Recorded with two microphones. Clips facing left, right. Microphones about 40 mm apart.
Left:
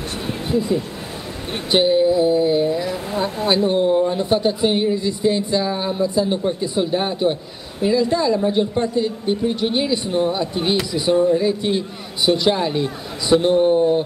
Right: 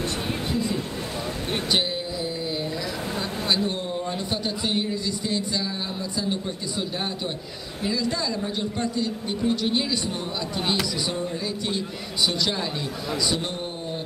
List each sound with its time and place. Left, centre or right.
0.5 s speech: centre
1.7 s speech: left